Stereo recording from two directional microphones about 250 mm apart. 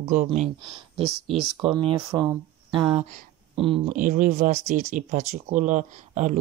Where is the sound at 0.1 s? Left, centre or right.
Right.